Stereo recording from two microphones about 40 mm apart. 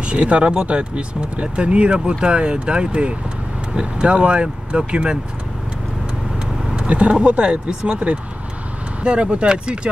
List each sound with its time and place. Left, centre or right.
0.0 s speech: right
6.7 s speech: right